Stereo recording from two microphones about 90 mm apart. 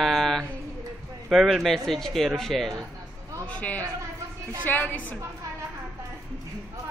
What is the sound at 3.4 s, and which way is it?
A man's voice, 15° left (ahead or behind).